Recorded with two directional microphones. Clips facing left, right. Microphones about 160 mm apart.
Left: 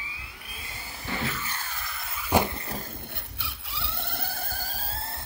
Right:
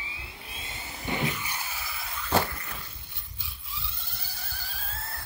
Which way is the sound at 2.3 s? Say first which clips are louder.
Left 3 dB; 20° left (ahead or behind).